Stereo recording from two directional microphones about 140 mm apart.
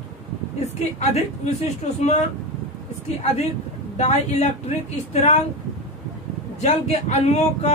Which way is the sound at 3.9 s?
50° left (ahead or behind).